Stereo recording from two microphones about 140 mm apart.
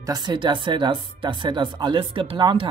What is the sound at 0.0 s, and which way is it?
Speech, 30° right (ahead or behind).